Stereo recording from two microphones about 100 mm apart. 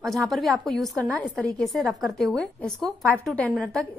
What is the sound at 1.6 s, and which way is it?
A woman's voice, centre (ahead or behind).